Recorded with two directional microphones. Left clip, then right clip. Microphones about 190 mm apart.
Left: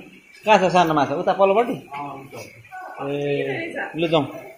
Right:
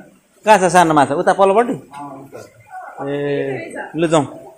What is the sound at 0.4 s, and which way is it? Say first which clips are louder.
A man's voice: right 5 dB; 35° right (ahead or behind).